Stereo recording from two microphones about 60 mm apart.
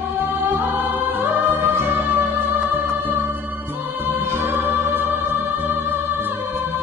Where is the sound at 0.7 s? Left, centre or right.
Right.